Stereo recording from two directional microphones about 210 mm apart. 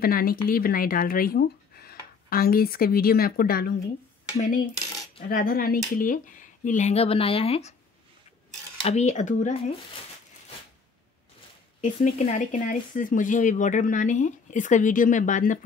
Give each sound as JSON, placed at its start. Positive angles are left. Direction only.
{"t": 0.0, "sound": "speech", "side_deg": 45}
{"t": 4.7, "sound": "cutlery", "side_deg": 15}
{"t": 5.3, "sound": "speech", "side_deg": 45}
{"t": 8.8, "sound": "speech", "side_deg": 35}
{"t": 11.8, "sound": "speech", "side_deg": 35}